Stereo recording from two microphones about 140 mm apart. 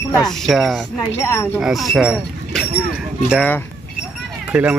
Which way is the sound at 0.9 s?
20° left (ahead or behind).